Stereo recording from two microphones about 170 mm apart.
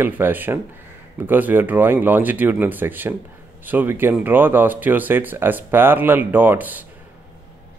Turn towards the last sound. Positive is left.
turn(degrees=-10)  # may be behind; listen again after turning